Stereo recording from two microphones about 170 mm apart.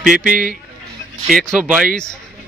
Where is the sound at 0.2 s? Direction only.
50° right (ahead or behind).